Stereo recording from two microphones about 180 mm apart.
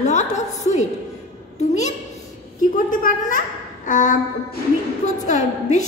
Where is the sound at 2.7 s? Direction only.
50° left (ahead or behind).